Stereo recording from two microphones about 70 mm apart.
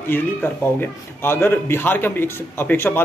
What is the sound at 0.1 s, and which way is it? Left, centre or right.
A man's voice, left.